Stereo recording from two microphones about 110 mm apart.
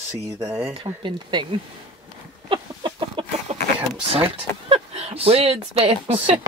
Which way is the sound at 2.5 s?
45° right (ahead or behind).